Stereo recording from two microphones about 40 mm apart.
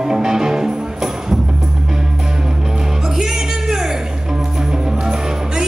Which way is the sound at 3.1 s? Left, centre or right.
Centre.